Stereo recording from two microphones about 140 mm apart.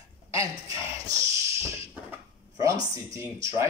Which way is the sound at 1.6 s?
15° right (ahead or behind).